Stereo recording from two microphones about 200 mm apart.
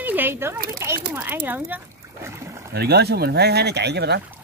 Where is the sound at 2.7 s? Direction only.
55° right (ahead or behind).